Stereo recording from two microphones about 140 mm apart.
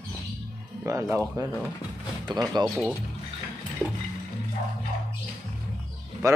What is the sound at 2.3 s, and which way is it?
Speech, 30° right (ahead or behind).